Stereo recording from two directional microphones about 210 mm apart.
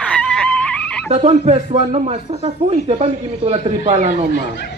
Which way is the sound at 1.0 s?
30° right (ahead or behind).